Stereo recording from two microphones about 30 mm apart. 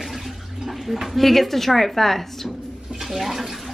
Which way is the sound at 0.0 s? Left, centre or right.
Centre.